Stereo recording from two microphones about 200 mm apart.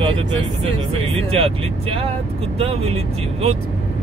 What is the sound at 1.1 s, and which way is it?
Speech, 30° right (ahead or behind).